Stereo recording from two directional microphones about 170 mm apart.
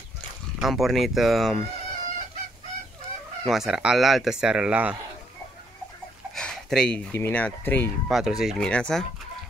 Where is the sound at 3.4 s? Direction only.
Centre (ahead or behind).